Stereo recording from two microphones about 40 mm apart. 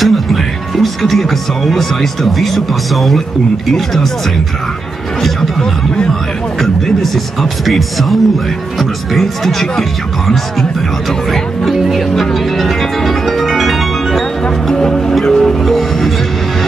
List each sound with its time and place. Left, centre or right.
0.0 s speech: centre
5.6 s speech: centre
7.6 s speech: centre
12.2 s music: centre
14.7 s music: centre